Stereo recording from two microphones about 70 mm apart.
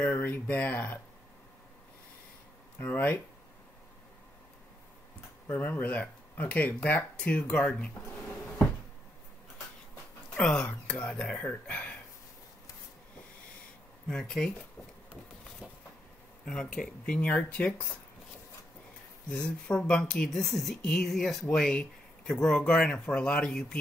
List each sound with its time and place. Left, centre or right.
0.0 s speech: left
2.8 s speech: left
5.5 s speech: left
7.2 s speech: centre
10.3 s speech: centre
14.0 s speech: centre
15.6 s a sound: centre
16.4 s speech: centre
19.3 s speech: centre